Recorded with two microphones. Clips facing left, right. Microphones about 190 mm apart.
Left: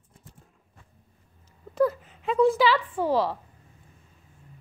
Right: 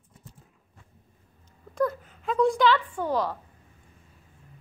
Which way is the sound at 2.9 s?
30° left (ahead or behind).